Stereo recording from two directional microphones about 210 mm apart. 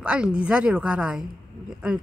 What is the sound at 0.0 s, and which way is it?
A woman's voice, 5° right (ahead or behind).